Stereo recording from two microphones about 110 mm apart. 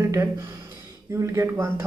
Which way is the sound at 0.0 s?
25° right (ahead or behind).